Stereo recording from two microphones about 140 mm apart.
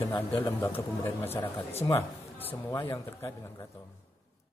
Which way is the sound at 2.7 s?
20° left (ahead or behind).